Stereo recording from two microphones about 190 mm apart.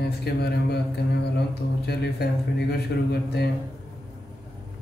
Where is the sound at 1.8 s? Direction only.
60° left (ahead or behind).